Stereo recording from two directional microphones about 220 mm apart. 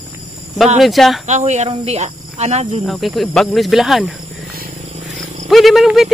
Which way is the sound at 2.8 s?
Centre (ahead or behind).